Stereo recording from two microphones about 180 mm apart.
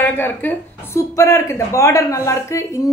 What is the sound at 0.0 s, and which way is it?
Speech, 10° left (ahead or behind).